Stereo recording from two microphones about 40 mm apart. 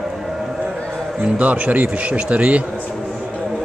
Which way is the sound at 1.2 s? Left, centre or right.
Right.